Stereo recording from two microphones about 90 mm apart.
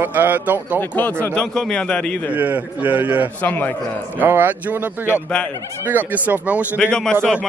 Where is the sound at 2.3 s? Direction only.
20° right (ahead or behind).